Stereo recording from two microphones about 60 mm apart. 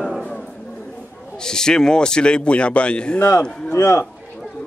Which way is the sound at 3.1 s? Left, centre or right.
Left.